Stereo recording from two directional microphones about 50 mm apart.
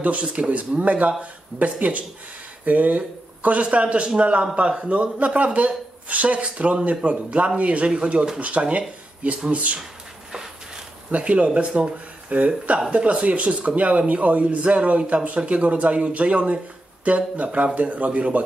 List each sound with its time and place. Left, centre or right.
0.0 s speech: right
11.1 s speech: right